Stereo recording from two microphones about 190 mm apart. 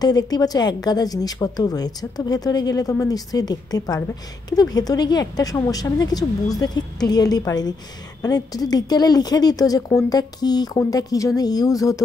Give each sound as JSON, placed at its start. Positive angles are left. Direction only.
{"t": 0.0, "sound": "speech", "side_deg": 20}